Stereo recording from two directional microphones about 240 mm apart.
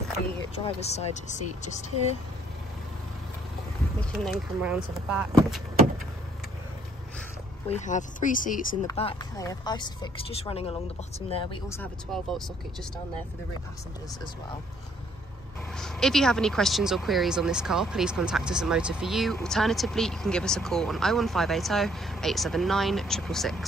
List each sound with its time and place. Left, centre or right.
0.7 s speech: left
4.0 s speech: centre
7.6 s speech: left
8.8 s speech: centre
11.7 s speech: centre
15.7 s speech: centre